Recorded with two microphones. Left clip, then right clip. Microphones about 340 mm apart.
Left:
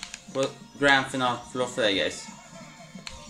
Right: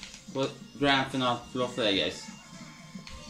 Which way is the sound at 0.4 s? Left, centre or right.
Left.